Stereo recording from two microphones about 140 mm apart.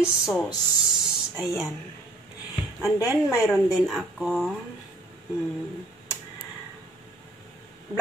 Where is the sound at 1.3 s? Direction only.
20° left (ahead or behind).